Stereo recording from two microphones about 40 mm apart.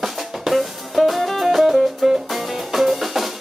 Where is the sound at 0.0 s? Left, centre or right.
Centre.